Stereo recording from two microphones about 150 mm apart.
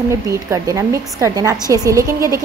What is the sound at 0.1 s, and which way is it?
A woman's voice, 20° right (ahead or behind).